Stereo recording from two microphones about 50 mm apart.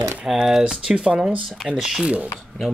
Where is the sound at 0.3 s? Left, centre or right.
Centre.